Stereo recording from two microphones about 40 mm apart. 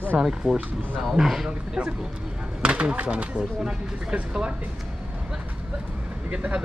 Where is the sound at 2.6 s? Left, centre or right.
Right.